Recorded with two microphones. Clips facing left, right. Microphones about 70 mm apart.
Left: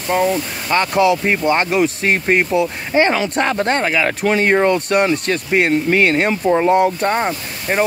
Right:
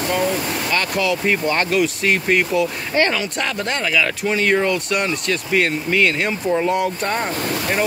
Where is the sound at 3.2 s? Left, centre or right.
Left.